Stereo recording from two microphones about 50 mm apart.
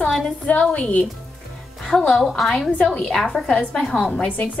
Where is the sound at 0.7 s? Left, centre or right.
Left.